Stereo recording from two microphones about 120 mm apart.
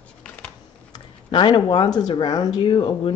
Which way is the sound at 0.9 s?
40° left (ahead or behind).